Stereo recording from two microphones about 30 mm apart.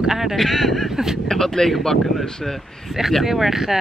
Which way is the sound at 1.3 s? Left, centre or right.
Centre.